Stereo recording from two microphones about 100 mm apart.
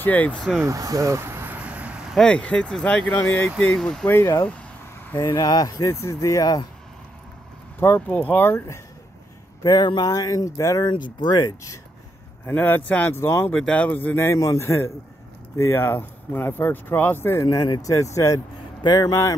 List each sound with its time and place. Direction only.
0.0 s speech: 15° left (ahead or behind)
0.7 s vehicle: 35° right (ahead or behind); by 2.1 s 10° right (ahead or behind)
2.1 s speech: 10° left (ahead or behind)
4.1 s speech: 25° left (ahead or behind)
5.2 s speech: 35° left (ahead or behind)
7.8 s speech: 20° left (ahead or behind)
9.6 s speech: 40° left (ahead or behind)
10.9 s speech: 45° left (ahead or behind)
12.4 s speech: 20° left (ahead or behind)
13.5 s speech: 10° left (ahead or behind)
17.5 s speech: 40° left (ahead or behind)
17.9 s speech: 30° left (ahead or behind)
18.8 s speech: 45° left (ahead or behind)